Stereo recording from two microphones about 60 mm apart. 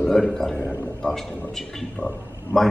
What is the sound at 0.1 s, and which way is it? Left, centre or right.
A man's voice, centre.